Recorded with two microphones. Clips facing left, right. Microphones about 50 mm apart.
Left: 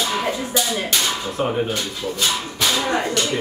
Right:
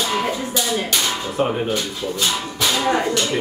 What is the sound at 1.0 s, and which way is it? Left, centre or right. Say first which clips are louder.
Speech: right 1 dB; centre.